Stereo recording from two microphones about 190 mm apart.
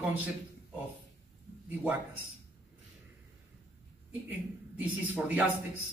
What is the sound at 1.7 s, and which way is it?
Speech, 10° right (ahead or behind).